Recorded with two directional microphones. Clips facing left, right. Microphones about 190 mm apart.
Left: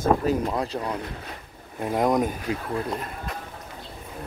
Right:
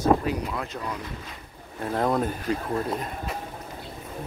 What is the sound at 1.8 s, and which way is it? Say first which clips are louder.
Speech: left 2 dB; 15° left (ahead or behind).